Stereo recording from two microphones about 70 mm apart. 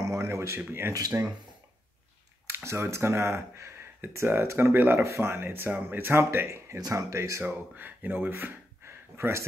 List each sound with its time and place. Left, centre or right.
0.0 s a sound: right
0.6 s speech: right
2.4 s speech: right
6.8 s speech: right
7.4 s speech: right